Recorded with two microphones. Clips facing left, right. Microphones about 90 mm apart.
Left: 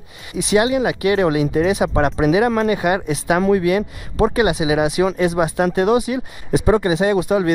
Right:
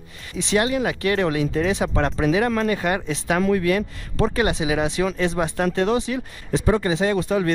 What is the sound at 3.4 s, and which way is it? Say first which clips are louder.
Speech: left 4 dB; 25° left (ahead or behind).